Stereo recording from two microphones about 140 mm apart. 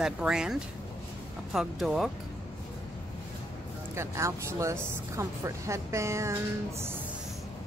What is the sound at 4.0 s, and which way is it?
Speech, 20° right (ahead or behind).